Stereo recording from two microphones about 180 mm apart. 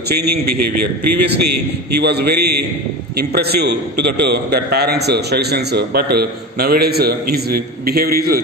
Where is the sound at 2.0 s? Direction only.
65° right (ahead or behind).